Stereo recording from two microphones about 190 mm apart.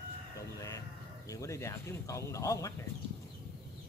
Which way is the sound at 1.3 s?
15° left (ahead or behind).